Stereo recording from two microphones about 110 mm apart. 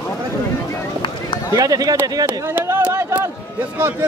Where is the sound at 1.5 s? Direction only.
35° right (ahead or behind).